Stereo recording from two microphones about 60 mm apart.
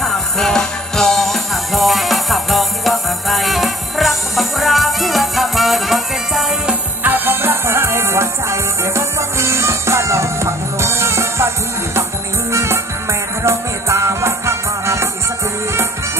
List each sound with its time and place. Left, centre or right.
0.0 s music: centre
7.0 s music: right